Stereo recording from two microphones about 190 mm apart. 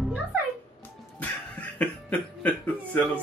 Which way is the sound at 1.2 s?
10° left (ahead or behind).